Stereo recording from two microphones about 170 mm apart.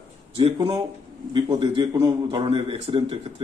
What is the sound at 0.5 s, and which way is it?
A man's voice, 25° right (ahead or behind).